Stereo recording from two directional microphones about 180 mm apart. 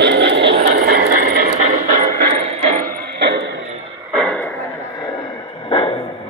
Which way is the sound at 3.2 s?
65° right (ahead or behind).